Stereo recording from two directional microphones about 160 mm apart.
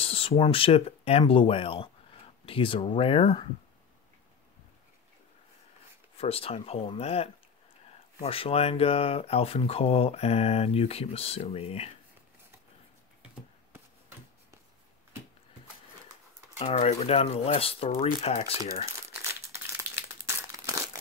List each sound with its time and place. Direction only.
0.0 s speech: 35° left (ahead or behind)
6.1 s speech: 40° left (ahead or behind)
16.5 s speech: 45° left (ahead or behind)
19.2 s crumpling: 15° right (ahead or behind)